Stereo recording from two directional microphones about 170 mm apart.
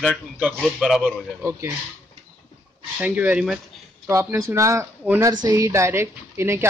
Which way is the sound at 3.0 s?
10° right (ahead or behind).